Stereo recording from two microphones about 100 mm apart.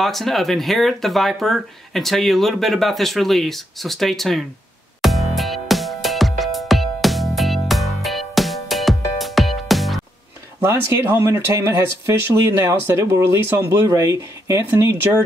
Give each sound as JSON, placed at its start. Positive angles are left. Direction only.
{"t": 0.0, "sound": "speech", "side_deg": 0}
{"t": 5.0, "sound": "music", "side_deg": 0}
{"t": 10.6, "sound": "speech", "side_deg": -25}